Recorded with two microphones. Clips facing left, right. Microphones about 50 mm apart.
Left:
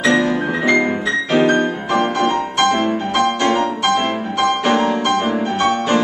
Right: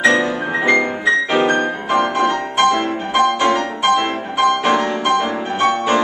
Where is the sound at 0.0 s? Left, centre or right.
Centre.